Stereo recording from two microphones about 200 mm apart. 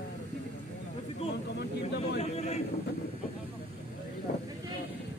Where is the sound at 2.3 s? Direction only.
30° left (ahead or behind).